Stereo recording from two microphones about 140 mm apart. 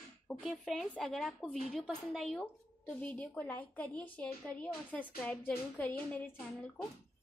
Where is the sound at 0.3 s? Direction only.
Centre (ahead or behind).